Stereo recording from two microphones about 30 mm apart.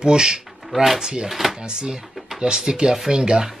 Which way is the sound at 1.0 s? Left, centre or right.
Right.